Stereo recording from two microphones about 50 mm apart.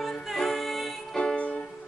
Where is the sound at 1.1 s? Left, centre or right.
Centre.